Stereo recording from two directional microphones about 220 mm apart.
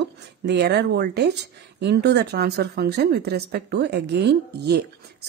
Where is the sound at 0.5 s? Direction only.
50° right (ahead or behind).